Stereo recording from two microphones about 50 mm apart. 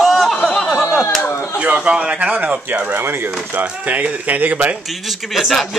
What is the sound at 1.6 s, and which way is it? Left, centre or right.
Speech, right.